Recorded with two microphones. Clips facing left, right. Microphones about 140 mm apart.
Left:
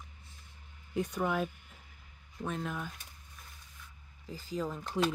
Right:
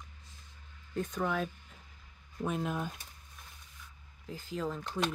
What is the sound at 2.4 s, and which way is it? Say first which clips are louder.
Speech: right 3 dB; 15° right (ahead or behind).